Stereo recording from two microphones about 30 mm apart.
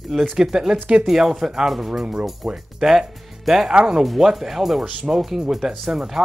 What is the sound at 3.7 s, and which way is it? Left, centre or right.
Speech, right.